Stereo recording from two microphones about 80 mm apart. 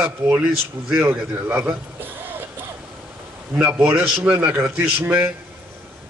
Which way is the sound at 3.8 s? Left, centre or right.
Right.